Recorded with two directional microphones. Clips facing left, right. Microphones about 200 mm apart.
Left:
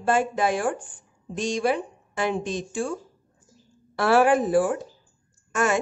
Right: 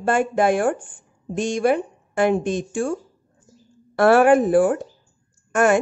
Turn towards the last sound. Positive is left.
turn(degrees=-55)  # may be behind; listen again after turning